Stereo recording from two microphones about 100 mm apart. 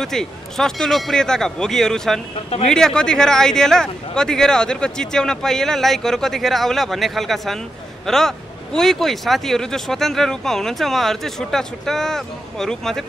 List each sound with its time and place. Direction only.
0.0 s speech: 5° left (ahead or behind)